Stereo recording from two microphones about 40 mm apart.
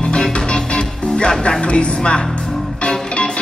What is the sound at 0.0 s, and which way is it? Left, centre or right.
Music, left.